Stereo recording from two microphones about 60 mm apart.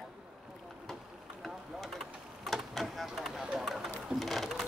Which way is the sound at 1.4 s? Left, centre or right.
Centre.